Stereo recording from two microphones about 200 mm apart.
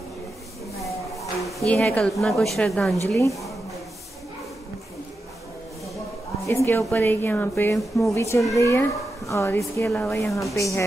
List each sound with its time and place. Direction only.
1.7 s a woman's voice: 5° left (ahead or behind)
6.4 s speech: 15° left (ahead or behind)